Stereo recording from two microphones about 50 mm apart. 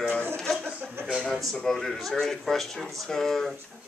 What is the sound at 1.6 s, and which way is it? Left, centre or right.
Speech, centre.